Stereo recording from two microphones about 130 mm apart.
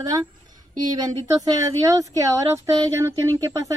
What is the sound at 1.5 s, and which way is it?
Speech, 25° right (ahead or behind).